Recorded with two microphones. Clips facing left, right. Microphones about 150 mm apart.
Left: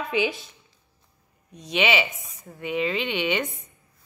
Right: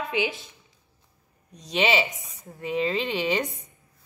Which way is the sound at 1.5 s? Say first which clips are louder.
Even; 35° right (ahead or behind).